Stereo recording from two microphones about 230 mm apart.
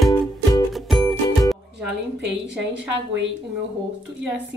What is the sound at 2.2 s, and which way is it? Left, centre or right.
A woman's voice, right.